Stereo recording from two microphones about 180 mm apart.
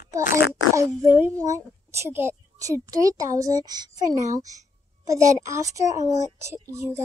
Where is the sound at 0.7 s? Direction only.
15° right (ahead or behind).